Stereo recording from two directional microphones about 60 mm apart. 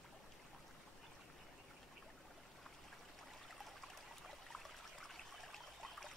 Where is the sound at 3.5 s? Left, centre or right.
Centre.